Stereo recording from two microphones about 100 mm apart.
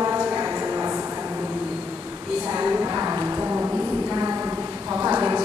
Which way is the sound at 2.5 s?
20° right (ahead or behind).